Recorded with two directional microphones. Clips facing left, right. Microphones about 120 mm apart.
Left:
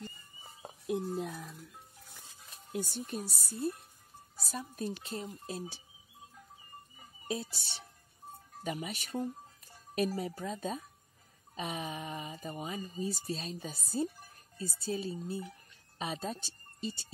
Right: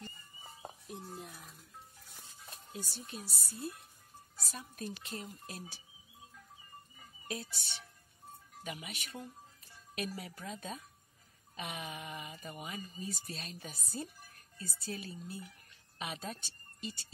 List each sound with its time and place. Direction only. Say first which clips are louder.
0.8 s speech: left 14 dB; 75° left (ahead or behind)
3.1 s speech: left 7 dB; 45° left (ahead or behind); by 5.8 s 25° left (ahead or behind)
7.0 s music: left 5 dB; 30° left (ahead or behind)
8.6 s speech: left 7 dB; 40° left (ahead or behind)